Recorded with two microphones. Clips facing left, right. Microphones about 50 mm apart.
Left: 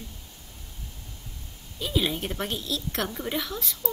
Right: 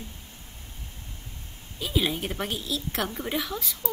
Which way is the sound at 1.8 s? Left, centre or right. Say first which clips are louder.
Even; centre.